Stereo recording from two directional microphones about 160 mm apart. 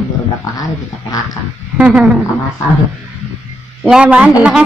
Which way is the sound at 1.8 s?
5° right (ahead or behind).